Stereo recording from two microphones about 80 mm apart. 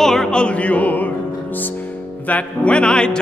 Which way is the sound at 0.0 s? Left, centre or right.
Centre.